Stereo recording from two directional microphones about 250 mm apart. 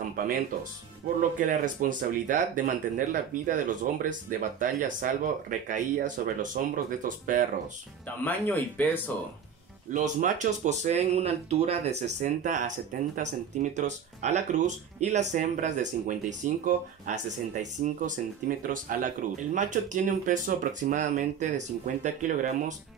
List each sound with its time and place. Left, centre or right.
0.2 s speech: right
1.4 s speech: right
8.2 s speech: centre
9.8 s speech: right